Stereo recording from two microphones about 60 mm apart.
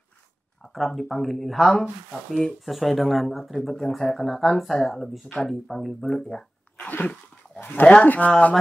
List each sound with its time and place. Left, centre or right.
0.6 s speech: centre
6.8 s sneeze: left
7.1 s dog: left
7.8 s speech: left